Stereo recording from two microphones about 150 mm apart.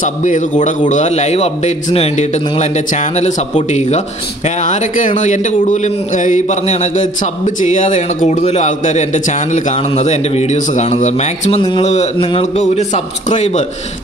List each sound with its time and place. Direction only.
0.0 s a man's voice: 55° left (ahead or behind)